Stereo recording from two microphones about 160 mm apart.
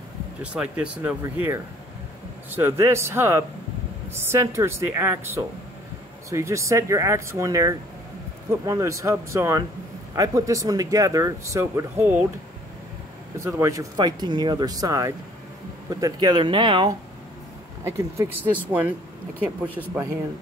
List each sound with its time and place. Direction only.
0.4 s speech: 10° right (ahead or behind)
13.4 s speech: 20° right (ahead or behind)
17.8 s speech: 15° right (ahead or behind)